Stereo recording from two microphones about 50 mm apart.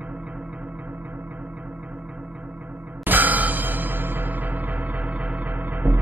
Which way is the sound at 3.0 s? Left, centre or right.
Right.